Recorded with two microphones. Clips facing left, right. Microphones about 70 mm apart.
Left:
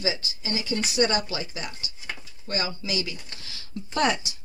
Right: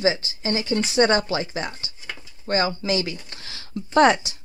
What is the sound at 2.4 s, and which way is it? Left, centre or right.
Speech, right.